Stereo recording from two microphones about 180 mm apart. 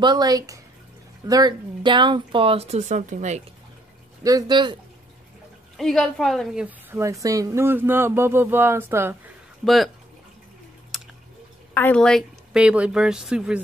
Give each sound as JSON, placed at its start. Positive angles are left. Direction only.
{"t": 0.0, "sound": "speech", "side_deg": -20}
{"t": 4.2, "sound": "speech", "side_deg": -20}
{"t": 5.8, "sound": "a woman's voice", "side_deg": 0}
{"t": 10.9, "sound": "a sound", "side_deg": 0}
{"t": 11.7, "sound": "speech", "side_deg": 10}